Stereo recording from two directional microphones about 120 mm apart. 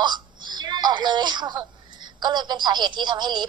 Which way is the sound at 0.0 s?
40° right (ahead or behind).